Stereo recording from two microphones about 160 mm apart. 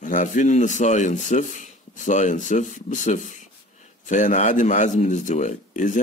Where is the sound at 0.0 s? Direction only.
50° left (ahead or behind).